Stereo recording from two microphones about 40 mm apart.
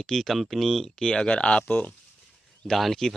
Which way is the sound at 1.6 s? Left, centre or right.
Left.